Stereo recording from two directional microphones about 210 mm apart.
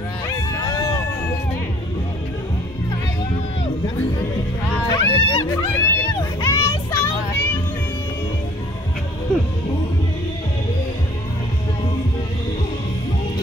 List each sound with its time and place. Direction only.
0.7 s a sound: 20° left (ahead or behind)
4.7 s music: 15° left (ahead or behind)
5.4 s music: 15° left (ahead or behind)